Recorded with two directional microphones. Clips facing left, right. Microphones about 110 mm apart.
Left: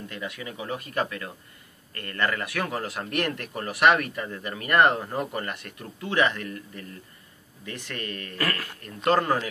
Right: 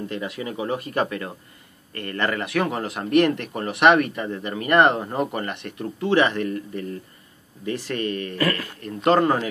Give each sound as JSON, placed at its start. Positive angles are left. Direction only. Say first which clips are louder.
{"t": 0.1, "sound": "speech", "louder": "right 6 dB", "side_deg": -30}